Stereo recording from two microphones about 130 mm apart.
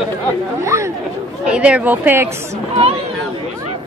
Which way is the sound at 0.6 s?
20° right (ahead or behind).